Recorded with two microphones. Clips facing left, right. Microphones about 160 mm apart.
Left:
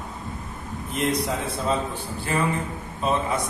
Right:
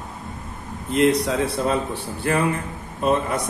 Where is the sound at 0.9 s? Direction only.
65° right (ahead or behind).